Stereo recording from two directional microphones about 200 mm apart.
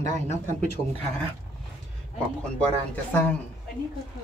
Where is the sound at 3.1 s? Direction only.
10° left (ahead or behind).